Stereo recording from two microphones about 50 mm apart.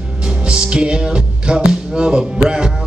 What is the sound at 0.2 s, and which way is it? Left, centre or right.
Music, centre.